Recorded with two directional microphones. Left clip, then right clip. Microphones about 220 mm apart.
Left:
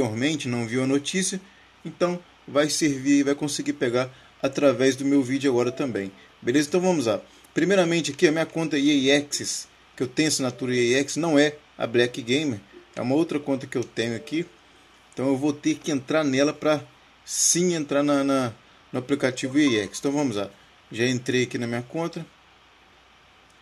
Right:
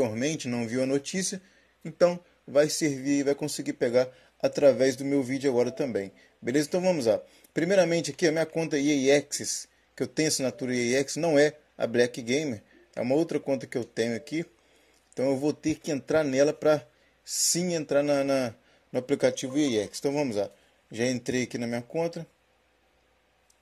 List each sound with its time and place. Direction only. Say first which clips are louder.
0.0 s speech: left 3 dB; 15° right (ahead or behind)